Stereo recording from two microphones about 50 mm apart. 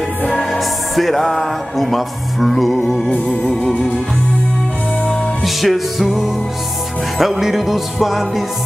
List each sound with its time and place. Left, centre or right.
0.3 s speech: centre
5.4 s music: centre
7.2 s music: centre